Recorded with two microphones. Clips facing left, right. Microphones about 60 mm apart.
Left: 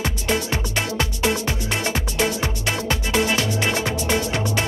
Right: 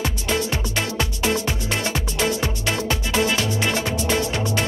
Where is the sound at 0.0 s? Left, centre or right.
Left.